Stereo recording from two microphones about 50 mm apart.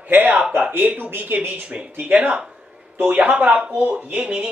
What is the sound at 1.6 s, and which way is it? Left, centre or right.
A man's voice, right.